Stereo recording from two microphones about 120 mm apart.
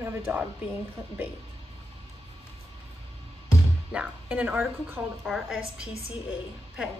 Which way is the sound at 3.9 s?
10° right (ahead or behind).